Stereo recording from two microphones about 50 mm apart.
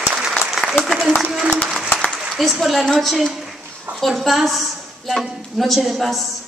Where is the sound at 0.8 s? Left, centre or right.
Centre.